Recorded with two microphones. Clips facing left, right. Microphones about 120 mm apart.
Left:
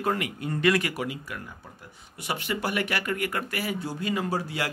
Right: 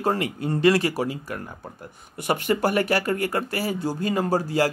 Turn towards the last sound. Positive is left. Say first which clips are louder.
# right 7 dB
turn(degrees=-40)  # may be behind; listen again after turning